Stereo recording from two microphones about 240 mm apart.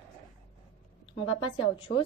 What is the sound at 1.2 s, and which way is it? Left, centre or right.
Speech, left.